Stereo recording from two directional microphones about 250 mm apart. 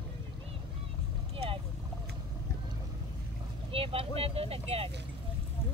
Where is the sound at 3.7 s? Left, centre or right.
Right.